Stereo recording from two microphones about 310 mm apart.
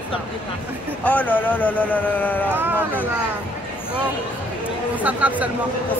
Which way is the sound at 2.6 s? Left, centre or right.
Centre.